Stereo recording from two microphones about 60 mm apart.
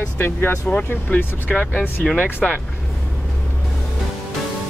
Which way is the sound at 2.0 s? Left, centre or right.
Centre.